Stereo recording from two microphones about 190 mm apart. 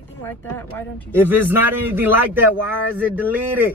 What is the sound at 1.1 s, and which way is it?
Speech, 10° right (ahead or behind).